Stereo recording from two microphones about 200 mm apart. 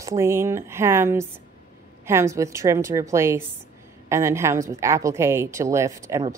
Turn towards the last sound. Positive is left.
turn(degrees=-15)  # may be behind; listen again after turning